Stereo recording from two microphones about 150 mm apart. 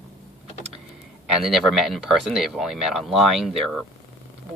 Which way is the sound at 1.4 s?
Centre (ahead or behind).